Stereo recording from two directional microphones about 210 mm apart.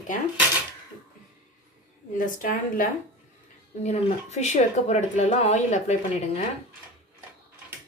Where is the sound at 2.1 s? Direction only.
40° left (ahead or behind).